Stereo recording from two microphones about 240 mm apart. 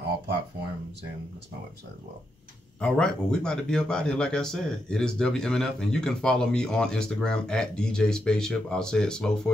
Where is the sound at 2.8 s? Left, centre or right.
Centre.